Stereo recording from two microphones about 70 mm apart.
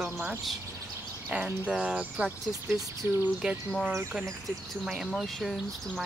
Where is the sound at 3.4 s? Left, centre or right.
Centre.